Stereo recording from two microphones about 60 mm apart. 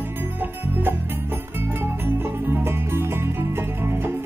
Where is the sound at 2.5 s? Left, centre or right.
Right.